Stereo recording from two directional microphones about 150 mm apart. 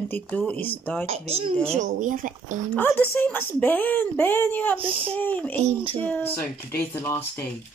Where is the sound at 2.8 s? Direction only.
10° left (ahead or behind).